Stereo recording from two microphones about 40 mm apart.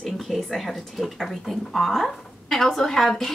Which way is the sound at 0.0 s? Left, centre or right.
Centre.